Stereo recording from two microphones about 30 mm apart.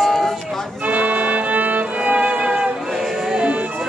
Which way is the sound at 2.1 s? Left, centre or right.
Right.